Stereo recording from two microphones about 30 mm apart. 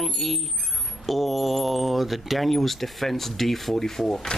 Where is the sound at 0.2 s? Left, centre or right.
Centre.